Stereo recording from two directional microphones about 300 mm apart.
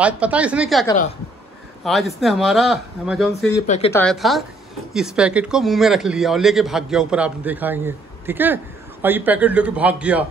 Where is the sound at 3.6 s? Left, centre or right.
Left.